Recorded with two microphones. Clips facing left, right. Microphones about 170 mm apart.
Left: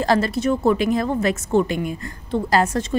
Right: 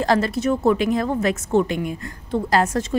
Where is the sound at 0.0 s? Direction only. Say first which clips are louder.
Even; centre (ahead or behind).